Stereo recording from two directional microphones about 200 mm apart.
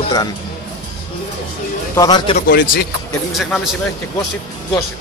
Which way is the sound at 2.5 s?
55° left (ahead or behind).